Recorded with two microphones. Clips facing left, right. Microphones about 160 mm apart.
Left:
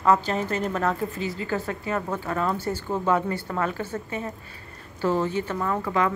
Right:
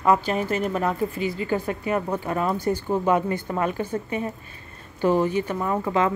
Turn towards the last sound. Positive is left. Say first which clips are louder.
# right 2 dB
turn(degrees=-20)  # may be behind; listen again after turning